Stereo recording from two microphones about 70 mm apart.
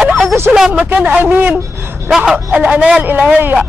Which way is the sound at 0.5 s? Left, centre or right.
Centre.